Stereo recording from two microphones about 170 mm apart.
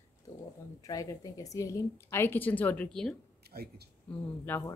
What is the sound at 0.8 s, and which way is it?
A woman's voice, 20° left (ahead or behind).